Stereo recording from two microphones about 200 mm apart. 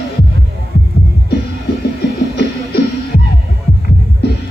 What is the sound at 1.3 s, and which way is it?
Music, 55° left (ahead or behind).